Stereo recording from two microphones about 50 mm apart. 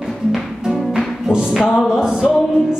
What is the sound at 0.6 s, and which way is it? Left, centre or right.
Music, centre.